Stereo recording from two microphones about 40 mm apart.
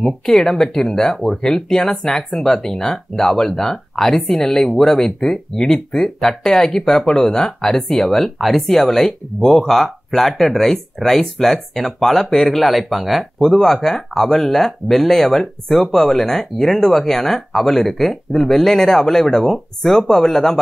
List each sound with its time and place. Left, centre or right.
0.5 s speech: centre
13.4 s speech: centre